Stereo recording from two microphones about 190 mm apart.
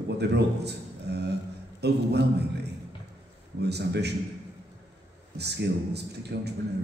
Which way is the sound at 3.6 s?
60° right (ahead or behind).